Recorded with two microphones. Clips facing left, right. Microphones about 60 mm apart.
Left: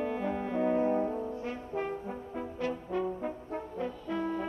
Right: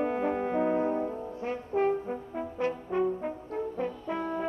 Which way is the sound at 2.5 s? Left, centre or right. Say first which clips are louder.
Right 4 dB; right.